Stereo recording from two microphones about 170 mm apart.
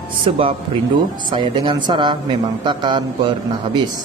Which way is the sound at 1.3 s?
25° right (ahead or behind).